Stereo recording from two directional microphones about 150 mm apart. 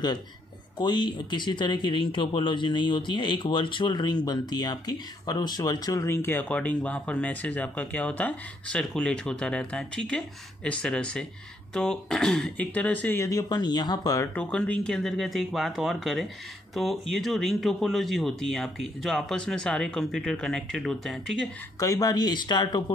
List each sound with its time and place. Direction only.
0.7 s speech: 30° left (ahead or behind); by 13.2 s 10° left (ahead or behind)
13.2 s speech: 25° left (ahead or behind)
14.3 s speech: 5° left (ahead or behind)
21.7 s speech: 25° left (ahead or behind)